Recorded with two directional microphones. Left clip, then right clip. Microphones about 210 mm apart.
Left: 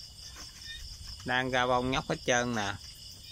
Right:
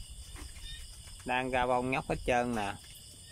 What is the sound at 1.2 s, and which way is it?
Speech, 5° right (ahead or behind).